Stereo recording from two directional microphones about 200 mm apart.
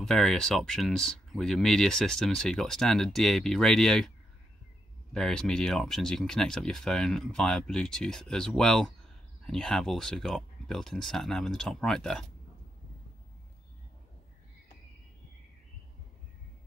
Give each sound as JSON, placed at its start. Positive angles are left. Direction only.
{"t": 0.0, "sound": "speech", "side_deg": 0}
{"t": 5.1, "sound": "speech", "side_deg": 5}